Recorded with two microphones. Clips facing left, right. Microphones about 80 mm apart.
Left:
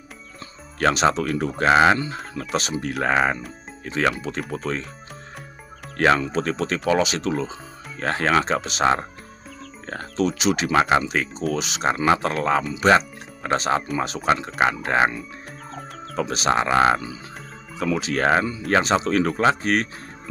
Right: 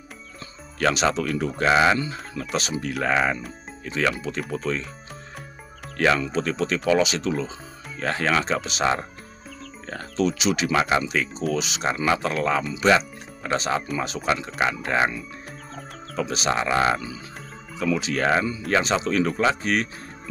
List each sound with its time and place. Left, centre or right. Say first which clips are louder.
0.7 s speech: left 2 dB; left
2.4 s speech: right 1 dB; left
2.8 s speech: left 2 dB; left
5.9 s speech: left 2 dB; left
9.8 s speech: left 1 dB; left